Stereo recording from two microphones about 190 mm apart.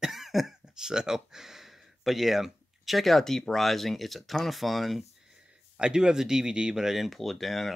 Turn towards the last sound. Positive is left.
turn(degrees=0)  # may be behind; listen again after turning